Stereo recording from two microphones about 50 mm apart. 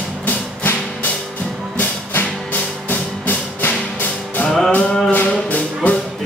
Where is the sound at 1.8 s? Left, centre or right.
Left.